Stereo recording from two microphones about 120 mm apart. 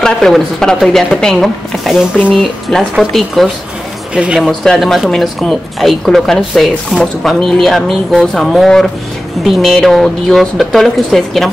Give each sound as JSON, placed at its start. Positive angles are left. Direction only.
{"t": 0.0, "sound": "speech", "side_deg": 5}